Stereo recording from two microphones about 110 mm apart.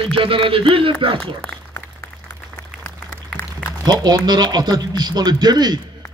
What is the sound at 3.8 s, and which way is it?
Speech, 40° right (ahead or behind).